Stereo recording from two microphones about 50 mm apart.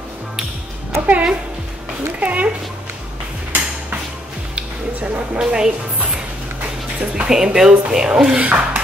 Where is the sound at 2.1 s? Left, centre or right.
Right.